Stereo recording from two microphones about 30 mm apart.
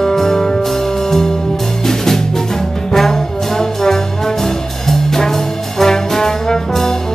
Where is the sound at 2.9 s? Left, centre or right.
Centre.